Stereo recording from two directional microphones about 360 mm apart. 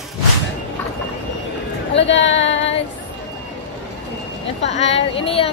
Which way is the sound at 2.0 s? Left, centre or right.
Left.